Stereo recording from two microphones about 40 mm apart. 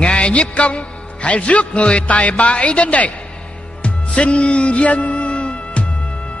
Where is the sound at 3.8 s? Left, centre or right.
Left.